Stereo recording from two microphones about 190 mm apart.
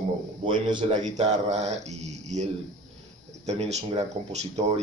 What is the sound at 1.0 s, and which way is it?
Speech, 35° right (ahead or behind).